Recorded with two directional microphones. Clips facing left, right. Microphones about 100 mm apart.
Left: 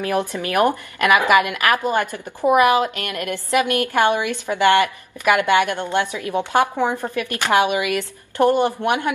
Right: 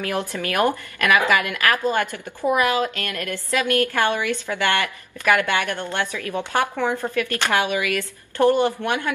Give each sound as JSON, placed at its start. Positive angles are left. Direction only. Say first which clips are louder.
{"t": 0.0, "sound": "a woman's voice", "louder": "left 3 dB", "side_deg": 20}